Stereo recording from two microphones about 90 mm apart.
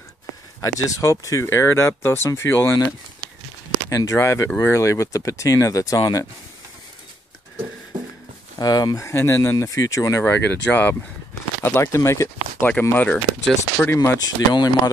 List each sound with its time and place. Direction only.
0.6 s speech: 35° left (ahead or behind)
3.9 s speech: 35° left (ahead or behind)
8.5 s speech: 45° left (ahead or behind)
9.0 s speech: 30° left (ahead or behind)
10.2 s speech: 20° left (ahead or behind)
12.9 s speech: 15° left (ahead or behind)
14.2 s speech: 50° left (ahead or behind)